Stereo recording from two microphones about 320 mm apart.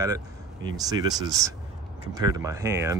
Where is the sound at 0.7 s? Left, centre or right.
Centre.